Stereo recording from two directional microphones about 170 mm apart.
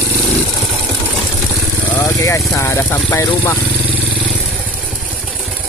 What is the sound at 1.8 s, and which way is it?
Speech, 15° left (ahead or behind).